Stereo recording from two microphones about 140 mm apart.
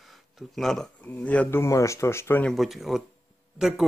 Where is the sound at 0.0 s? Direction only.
Centre (ahead or behind).